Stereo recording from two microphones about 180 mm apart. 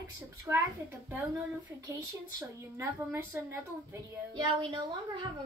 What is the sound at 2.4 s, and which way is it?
A woman's voice, 15° right (ahead or behind).